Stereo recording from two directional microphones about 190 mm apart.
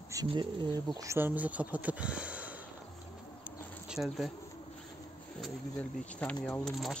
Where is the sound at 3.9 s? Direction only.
Centre (ahead or behind).